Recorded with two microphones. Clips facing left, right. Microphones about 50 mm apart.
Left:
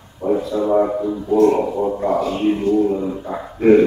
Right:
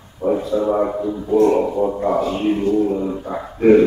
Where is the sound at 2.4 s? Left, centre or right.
Centre.